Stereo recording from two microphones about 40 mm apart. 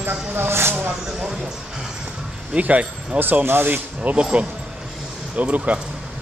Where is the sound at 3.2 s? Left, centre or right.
Right.